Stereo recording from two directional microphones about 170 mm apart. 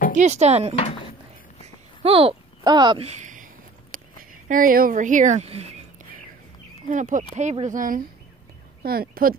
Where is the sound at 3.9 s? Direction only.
55° right (ahead or behind); by 5.7 s 35° right (ahead or behind).